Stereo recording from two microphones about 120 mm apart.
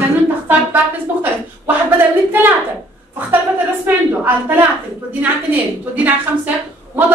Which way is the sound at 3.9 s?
15° right (ahead or behind).